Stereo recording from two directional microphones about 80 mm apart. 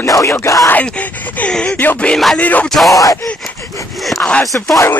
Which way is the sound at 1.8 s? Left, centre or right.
Left.